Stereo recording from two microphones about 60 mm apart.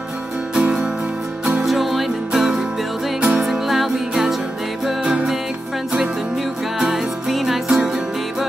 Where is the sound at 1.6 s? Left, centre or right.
Centre.